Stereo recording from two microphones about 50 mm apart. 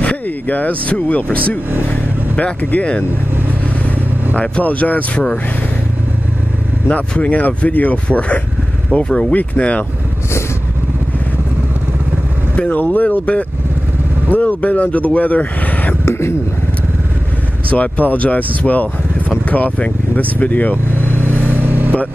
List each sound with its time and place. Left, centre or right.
0.0 s speech: left
4.4 s speech: left
6.9 s speech: left
12.5 s speech: left
16.1 s speech: left
17.6 s speech: left
21.6 s vehicle: right